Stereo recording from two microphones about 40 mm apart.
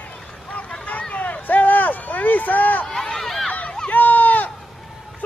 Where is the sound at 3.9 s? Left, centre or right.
Left.